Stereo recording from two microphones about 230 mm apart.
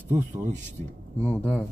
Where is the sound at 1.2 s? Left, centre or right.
Centre.